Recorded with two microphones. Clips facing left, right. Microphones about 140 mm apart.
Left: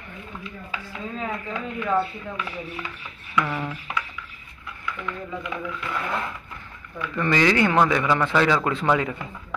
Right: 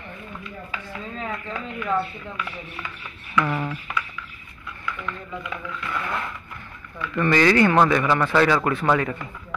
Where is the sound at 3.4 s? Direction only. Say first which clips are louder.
Right 3 dB; 15° right (ahead or behind).